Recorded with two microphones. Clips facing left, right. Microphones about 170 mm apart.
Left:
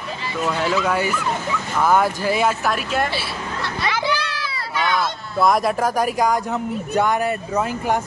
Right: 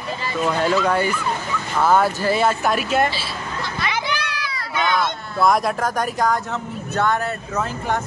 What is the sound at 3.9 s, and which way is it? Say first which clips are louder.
Children playing: left 4 dB; 20° right (ahead or behind).